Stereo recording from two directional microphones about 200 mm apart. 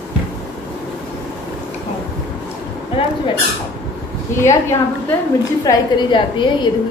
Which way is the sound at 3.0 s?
25° left (ahead or behind).